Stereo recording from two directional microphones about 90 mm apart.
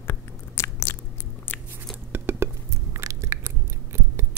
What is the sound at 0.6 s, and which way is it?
Biting, 30° left (ahead or behind).